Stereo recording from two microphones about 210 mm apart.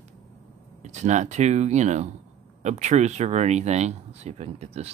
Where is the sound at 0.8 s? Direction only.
35° right (ahead or behind).